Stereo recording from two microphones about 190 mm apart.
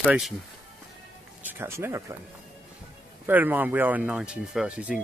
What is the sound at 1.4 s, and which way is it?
Speech, 10° right (ahead or behind).